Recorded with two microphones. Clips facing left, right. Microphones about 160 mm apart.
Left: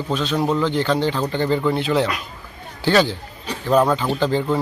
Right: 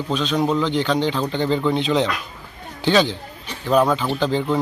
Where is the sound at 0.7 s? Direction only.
15° right (ahead or behind).